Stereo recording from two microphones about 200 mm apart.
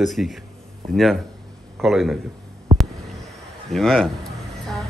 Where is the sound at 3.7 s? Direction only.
Centre (ahead or behind).